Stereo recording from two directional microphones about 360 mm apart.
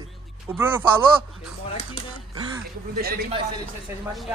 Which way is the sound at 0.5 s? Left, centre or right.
Centre.